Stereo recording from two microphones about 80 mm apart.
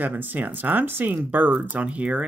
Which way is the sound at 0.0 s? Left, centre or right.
Right.